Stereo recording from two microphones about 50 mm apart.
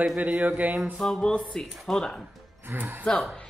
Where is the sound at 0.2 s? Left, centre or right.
Right.